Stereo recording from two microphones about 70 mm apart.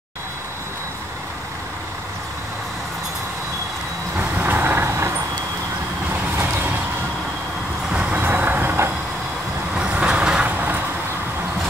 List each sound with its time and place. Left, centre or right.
4.2 s vehicle: right
6.3 s a sound: right
7.9 s vehicle: right
9.8 s vehicle: centre
10.5 s vehicle: right